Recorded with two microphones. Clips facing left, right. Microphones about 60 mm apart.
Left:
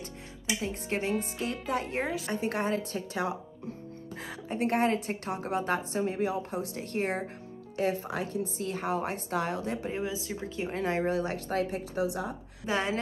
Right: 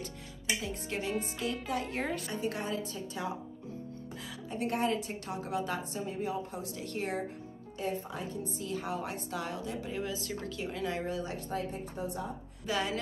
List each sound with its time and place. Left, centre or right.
0.6 s speech: left
2.3 s a woman's voice: left
4.5 s a woman's voice: left
7.7 s a woman's voice: left
9.9 s speech: centre
10.7 s a woman's voice: left
12.6 s speech: left